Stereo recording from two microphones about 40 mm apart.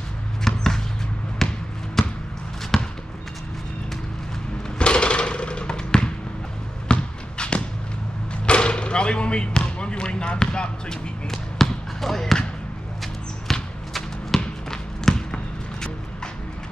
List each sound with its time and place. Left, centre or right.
0.4 s basketball bounce: centre
4.7 s a sound: left
6.9 s basketball bounce: left
11.2 s basketball bounce: centre
13.5 s basketball bounce: centre